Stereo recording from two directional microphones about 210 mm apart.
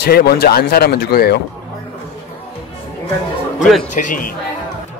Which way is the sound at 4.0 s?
40° left (ahead or behind).